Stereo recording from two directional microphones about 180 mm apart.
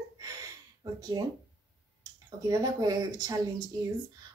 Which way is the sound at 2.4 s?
20° right (ahead or behind).